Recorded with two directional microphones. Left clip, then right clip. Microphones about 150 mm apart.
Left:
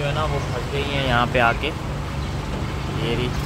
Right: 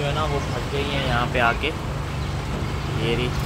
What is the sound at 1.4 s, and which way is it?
Speech, 30° left (ahead or behind).